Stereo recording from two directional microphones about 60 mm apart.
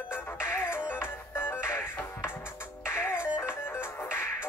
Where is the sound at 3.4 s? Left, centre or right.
Left.